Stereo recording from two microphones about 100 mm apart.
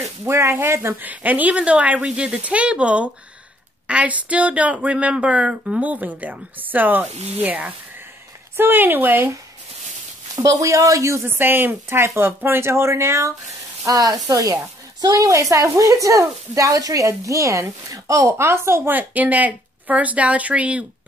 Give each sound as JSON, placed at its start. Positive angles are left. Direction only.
{"t": 0.2, "sound": "speech", "side_deg": -25}
{"t": 10.4, "sound": "speech", "side_deg": -35}